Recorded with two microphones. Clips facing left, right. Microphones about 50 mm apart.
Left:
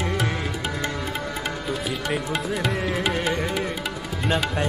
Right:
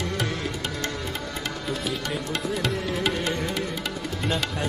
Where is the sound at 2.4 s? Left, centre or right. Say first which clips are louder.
Left 1 dB; centre.